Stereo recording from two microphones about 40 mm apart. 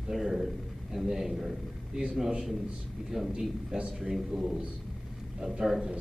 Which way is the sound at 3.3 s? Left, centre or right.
Centre.